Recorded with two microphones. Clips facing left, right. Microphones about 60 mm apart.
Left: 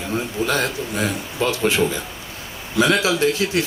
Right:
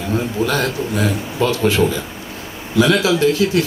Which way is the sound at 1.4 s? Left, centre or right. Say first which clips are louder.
Right 3 dB; left.